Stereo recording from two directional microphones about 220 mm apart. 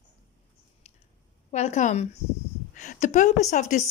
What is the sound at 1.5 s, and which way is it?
A woman's voice, 30° left (ahead or behind).